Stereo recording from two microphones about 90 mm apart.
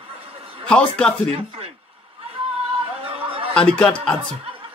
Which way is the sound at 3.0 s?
90° right.